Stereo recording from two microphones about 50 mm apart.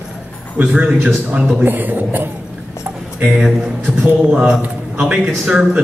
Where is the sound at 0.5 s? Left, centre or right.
Right.